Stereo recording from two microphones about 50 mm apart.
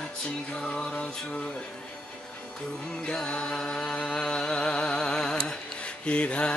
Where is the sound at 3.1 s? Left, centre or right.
Centre.